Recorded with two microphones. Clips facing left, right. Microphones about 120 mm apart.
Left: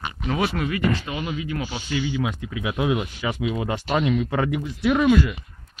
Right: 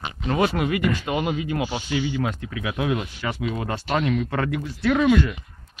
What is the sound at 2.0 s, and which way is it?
Speech, centre (ahead or behind).